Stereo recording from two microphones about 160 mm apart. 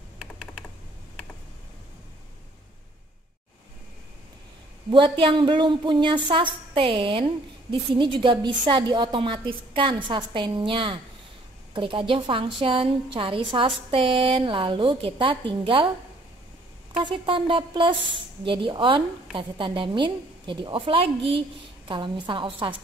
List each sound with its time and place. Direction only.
4.9 s a woman's voice: 30° right (ahead or behind)
16.9 s a woman's voice: 30° right (ahead or behind)